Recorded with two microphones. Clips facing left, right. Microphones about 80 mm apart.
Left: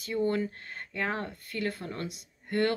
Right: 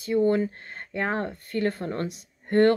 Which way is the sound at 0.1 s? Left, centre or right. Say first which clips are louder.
Right 7 dB; right.